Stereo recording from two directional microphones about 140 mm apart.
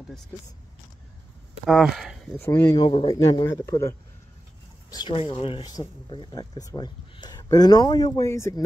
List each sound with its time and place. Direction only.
1.7 s speech: centre (ahead or behind)
2.3 s speech: 20° left (ahead or behind)
2.9 s speech: 45° left (ahead or behind)
3.4 s speech: 20° left (ahead or behind)
4.9 s speech: 35° left (ahead or behind)
5.7 s speech: 30° left (ahead or behind)